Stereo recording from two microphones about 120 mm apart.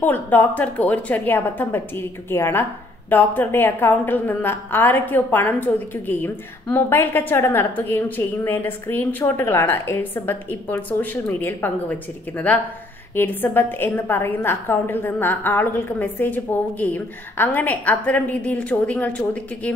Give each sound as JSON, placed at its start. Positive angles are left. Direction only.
{"t": 0.0, "sound": "a woman's voice", "side_deg": 15}